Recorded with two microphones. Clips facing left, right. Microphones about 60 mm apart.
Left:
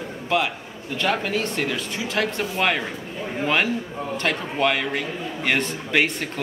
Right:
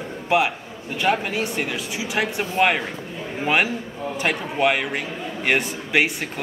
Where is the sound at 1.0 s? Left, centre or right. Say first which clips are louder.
Right 2 dB; centre.